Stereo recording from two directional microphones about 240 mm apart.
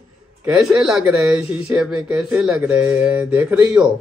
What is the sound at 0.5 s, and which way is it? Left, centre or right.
Speech, centre.